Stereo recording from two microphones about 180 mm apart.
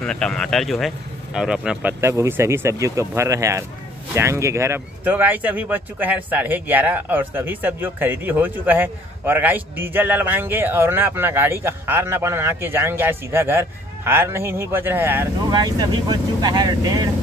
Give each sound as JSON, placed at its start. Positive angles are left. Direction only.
{"t": 0.0, "sound": "speech", "side_deg": 5}